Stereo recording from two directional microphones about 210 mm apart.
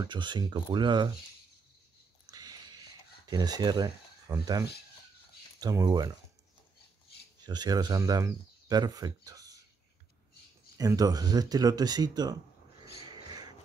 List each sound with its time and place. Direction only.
0.0 s speech: 20° right (ahead or behind)
2.2 s a sound: 20° right (ahead or behind)
3.3 s speech: 20° right (ahead or behind)
7.4 s speech: 20° right (ahead or behind)
10.8 s speech: 15° right (ahead or behind)
13.1 s dog: 20° right (ahead or behind)